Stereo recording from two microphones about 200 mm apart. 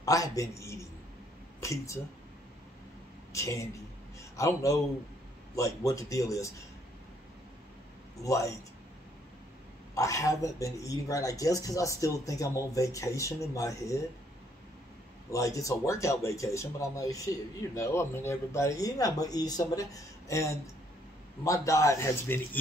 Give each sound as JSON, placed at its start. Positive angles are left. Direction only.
{"t": 0.0, "sound": "speech", "side_deg": 15}
{"t": 3.3, "sound": "speech", "side_deg": 15}
{"t": 8.2, "sound": "speech", "side_deg": 15}
{"t": 9.9, "sound": "speech", "side_deg": 15}
{"t": 15.3, "sound": "speech", "side_deg": 15}